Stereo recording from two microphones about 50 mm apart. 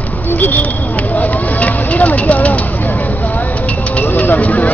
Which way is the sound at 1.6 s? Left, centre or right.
Left.